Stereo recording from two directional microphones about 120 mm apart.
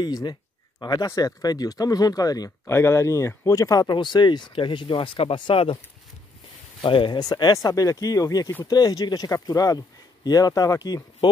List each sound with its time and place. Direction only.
0.0 s speech: 35° left (ahead or behind)
2.6 s speech: 20° left (ahead or behind); by 5.8 s 50° left (ahead or behind)
6.8 s speech: 45° left (ahead or behind)